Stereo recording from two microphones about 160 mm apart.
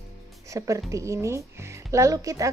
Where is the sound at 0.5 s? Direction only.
20° right (ahead or behind).